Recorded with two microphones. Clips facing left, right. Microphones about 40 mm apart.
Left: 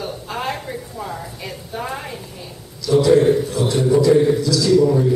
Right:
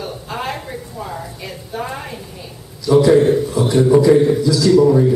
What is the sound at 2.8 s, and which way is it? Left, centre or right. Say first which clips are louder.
Mantra: right 2 dB; centre.